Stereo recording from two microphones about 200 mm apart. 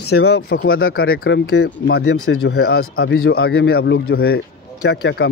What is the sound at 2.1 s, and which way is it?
Speech, 90° left.